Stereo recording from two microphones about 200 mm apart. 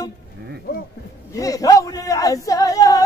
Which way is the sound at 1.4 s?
15° left (ahead or behind).